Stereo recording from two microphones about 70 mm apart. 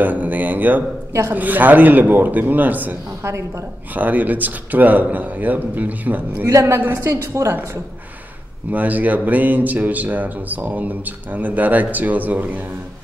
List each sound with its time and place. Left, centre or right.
0.0 s speech: right
3.3 s a woman's voice: right
3.9 s speech: right
6.5 s a woman's voice: right
8.7 s speech: right